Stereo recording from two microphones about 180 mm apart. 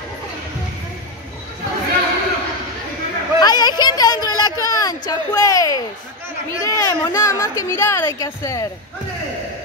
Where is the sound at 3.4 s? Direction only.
20° left (ahead or behind).